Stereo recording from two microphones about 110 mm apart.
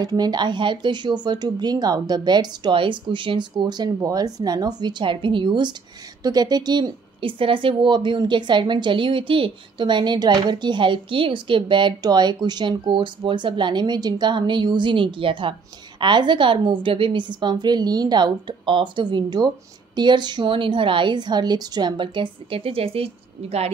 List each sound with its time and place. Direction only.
0.0 s speech: 35° right (ahead or behind); by 23.7 s 65° right (ahead or behind)